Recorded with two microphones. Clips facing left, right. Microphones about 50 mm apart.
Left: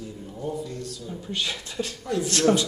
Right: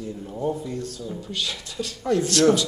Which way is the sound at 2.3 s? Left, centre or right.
Left.